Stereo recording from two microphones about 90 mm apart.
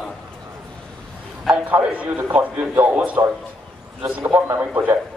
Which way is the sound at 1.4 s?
15° right (ahead or behind).